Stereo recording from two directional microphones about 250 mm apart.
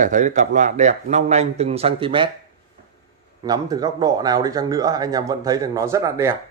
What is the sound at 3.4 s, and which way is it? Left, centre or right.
Speech, centre.